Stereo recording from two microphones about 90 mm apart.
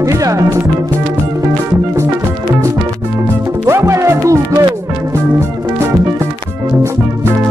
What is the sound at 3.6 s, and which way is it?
Music, 30° right (ahead or behind).